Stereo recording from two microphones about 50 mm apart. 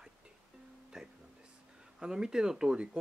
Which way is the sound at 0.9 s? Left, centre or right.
Centre.